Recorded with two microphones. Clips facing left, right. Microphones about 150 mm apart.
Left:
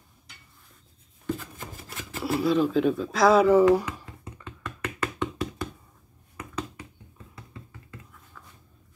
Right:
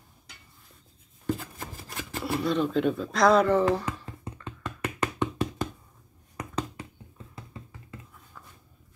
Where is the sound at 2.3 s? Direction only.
Centre (ahead or behind).